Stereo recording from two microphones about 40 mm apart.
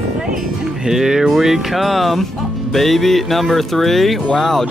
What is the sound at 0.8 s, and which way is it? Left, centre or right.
A woman's voice, centre.